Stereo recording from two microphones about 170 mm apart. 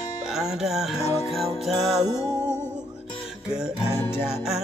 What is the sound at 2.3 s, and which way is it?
Music, 15° left (ahead or behind).